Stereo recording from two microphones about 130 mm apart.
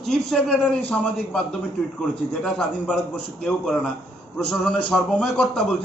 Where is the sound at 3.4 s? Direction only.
5° left (ahead or behind).